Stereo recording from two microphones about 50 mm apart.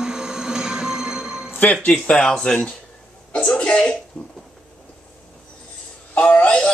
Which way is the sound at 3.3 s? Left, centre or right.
Centre.